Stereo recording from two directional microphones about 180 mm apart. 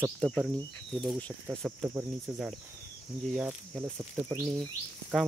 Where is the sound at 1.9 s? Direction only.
10° right (ahead or behind).